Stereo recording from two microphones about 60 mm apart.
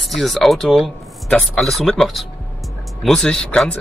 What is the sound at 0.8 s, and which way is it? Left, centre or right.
Speech, centre.